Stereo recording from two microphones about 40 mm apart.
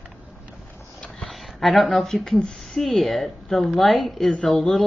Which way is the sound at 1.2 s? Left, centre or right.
Centre.